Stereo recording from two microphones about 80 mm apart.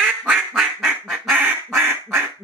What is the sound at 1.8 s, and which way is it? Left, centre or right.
Quack, right.